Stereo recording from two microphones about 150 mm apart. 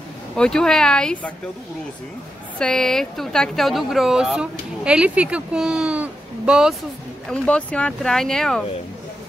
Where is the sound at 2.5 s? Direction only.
5° left (ahead or behind).